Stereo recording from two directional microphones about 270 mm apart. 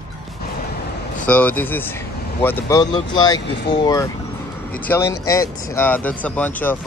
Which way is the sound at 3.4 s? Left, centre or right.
Left.